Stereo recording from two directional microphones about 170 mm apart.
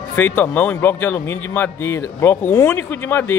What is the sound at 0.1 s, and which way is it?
A man's voice, 10° left (ahead or behind).